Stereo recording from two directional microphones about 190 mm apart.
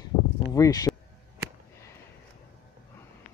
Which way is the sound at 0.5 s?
20° left (ahead or behind).